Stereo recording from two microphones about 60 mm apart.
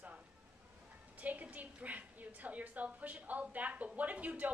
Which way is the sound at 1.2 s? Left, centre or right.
Right.